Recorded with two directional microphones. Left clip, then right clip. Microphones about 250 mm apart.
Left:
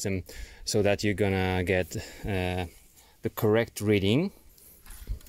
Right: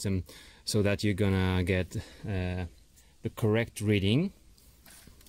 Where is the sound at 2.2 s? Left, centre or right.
Left.